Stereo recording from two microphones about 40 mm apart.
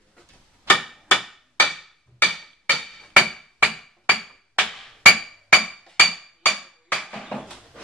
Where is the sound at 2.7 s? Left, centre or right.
Centre.